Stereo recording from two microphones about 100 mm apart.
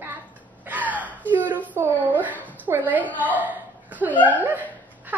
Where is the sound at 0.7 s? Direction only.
15° right (ahead or behind).